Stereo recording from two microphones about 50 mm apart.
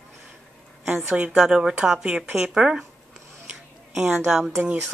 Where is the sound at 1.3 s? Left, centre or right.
Centre.